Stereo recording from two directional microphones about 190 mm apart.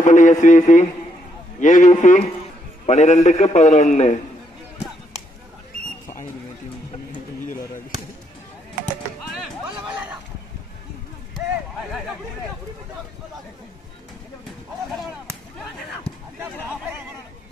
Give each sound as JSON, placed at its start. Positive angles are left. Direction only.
{"t": 0.0, "sound": "a man's voice", "side_deg": 40}